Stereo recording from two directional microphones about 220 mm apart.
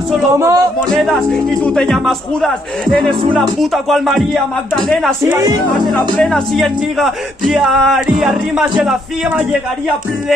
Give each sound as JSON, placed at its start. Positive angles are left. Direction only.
{"t": 0.3, "sound": "speech", "side_deg": -15}
{"t": 0.9, "sound": "speech", "side_deg": 0}
{"t": 3.1, "sound": "speech", "side_deg": -20}
{"t": 3.5, "sound": "speech", "side_deg": 0}